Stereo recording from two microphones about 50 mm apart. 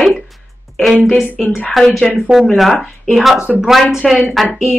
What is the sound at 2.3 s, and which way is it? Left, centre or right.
Speech, right.